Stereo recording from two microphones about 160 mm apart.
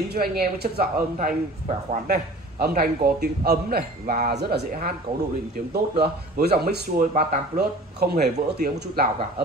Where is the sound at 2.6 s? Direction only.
70° right (ahead or behind).